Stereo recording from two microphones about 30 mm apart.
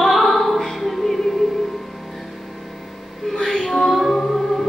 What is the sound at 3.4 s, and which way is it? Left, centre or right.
Music, centre.